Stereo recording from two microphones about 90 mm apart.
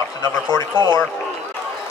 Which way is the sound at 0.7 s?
65° right (ahead or behind).